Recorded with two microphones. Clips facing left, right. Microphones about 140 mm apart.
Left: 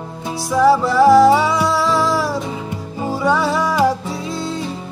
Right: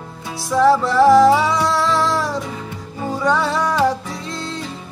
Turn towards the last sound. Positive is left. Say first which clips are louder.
# left 4 dB
turn(degrees=5)  # may be behind; listen again after turning